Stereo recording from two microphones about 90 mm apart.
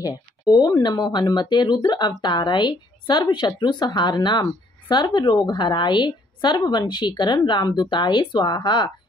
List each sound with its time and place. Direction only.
0.5 s speech: 45° left (ahead or behind)